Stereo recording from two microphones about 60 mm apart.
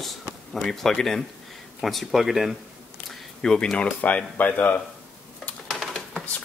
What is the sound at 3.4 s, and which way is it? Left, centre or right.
Speech, centre.